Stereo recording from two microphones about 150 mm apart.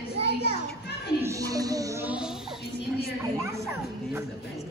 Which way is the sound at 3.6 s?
20° right (ahead or behind).